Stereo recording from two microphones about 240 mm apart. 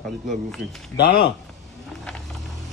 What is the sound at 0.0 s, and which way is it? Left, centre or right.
Speech, centre.